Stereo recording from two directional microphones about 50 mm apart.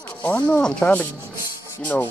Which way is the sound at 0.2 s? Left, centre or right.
Left.